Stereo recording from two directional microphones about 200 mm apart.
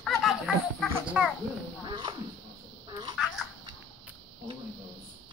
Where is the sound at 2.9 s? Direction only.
20° right (ahead or behind).